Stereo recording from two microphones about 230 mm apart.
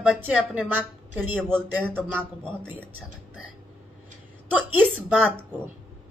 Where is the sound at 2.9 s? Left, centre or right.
Left.